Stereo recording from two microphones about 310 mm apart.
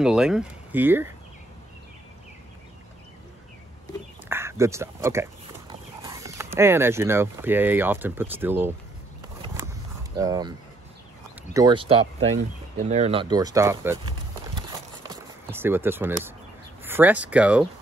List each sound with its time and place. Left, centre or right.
0.0 s speech: centre
4.3 s speech: centre
10.1 s speech: centre
11.5 s speech: centre